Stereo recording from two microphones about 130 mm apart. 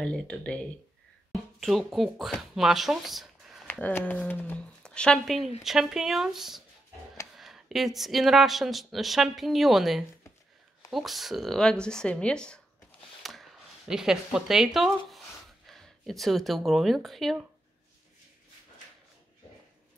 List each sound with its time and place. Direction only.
0.0 s speech: 5° left (ahead or behind)
3.6 s speech: 15° left (ahead or behind)